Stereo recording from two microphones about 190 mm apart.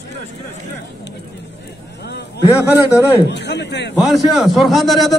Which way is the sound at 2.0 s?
60° left (ahead or behind).